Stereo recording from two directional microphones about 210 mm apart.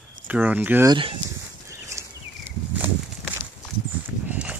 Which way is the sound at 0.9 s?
25° right (ahead or behind).